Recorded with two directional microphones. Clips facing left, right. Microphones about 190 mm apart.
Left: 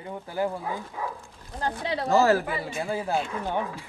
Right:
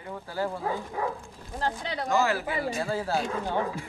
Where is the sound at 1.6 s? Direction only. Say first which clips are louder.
Left 2 dB; 25° left (ahead or behind).